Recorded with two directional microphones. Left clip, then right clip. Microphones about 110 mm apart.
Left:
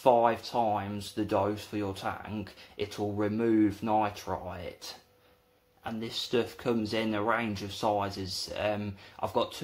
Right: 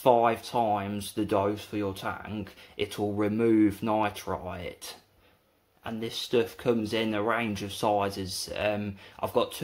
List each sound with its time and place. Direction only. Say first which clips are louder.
0.0 s speech: right 1 dB; 25° right (ahead or behind)
3.2 s speech: right 3 dB; 30° right (ahead or behind)